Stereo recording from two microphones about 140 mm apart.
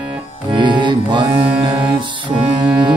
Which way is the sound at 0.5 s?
35° right (ahead or behind).